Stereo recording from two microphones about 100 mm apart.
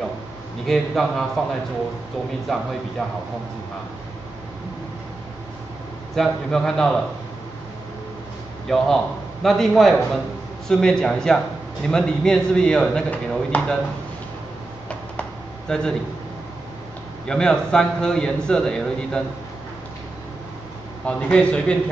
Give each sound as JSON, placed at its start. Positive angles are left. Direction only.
{"t": 0.7, "sound": "a man's voice", "side_deg": 0}
{"t": 2.5, "sound": "a man's voice", "side_deg": 0}
{"t": 6.1, "sound": "a man's voice", "side_deg": 5}
{"t": 8.6, "sound": "a man's voice", "side_deg": 5}
{"t": 15.7, "sound": "a man's voice", "side_deg": 5}
{"t": 17.3, "sound": "a man's voice", "side_deg": 10}
{"t": 21.0, "sound": "a man's voice", "side_deg": 10}